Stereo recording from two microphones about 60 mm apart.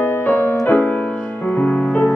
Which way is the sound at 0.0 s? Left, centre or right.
Left.